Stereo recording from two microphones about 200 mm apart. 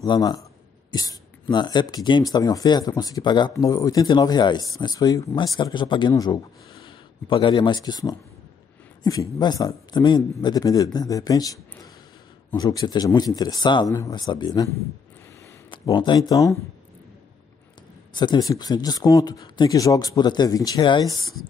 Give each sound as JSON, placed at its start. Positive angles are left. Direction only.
{"t": 0.0, "sound": "speech", "side_deg": 20}
{"t": 15.7, "sound": "speech", "side_deg": 20}
{"t": 18.1, "sound": "speech", "side_deg": 20}